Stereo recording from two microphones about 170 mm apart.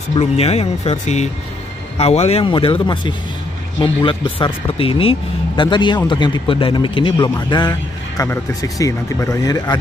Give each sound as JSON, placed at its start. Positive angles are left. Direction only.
{"t": 0.2, "sound": "speech", "side_deg": 40}